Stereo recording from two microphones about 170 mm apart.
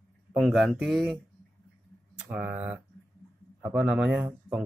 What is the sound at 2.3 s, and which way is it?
Speech, 10° right (ahead or behind).